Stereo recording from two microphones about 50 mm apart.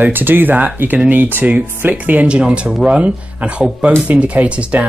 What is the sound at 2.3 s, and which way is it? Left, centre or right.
Speech, right.